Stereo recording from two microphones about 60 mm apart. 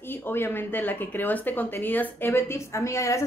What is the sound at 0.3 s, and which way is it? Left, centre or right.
Speech, left.